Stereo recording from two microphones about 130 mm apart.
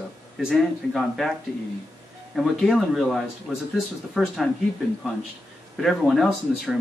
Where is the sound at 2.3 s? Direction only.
Centre (ahead or behind).